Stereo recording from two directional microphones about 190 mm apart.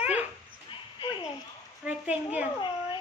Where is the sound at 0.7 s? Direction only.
25° left (ahead or behind).